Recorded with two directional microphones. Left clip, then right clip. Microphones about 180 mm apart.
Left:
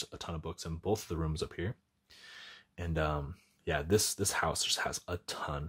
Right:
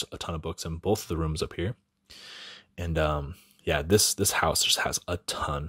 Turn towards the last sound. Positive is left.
turn(degrees=-30)  # may be behind; listen again after turning